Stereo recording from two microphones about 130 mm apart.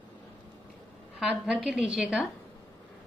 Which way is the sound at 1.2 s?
10° right (ahead or behind).